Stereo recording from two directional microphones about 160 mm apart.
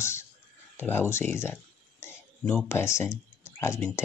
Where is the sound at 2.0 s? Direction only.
15° left (ahead or behind).